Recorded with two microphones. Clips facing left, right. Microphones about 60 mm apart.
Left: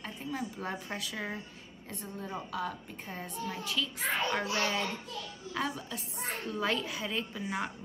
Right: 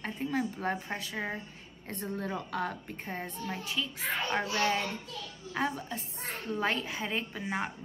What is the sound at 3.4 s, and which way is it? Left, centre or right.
A child's voice, right.